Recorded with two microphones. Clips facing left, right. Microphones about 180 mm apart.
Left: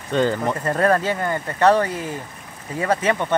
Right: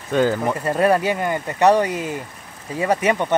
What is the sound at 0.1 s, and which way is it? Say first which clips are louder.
Speech: right 1 dB; 5° right (ahead or behind).